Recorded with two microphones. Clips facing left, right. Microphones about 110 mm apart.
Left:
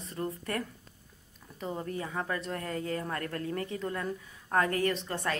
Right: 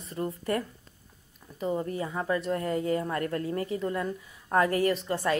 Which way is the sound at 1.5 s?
5° right (ahead or behind).